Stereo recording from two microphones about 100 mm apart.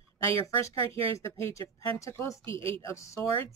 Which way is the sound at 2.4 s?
65° right (ahead or behind).